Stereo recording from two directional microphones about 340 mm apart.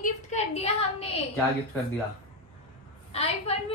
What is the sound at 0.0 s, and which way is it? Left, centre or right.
A woman's voice, centre.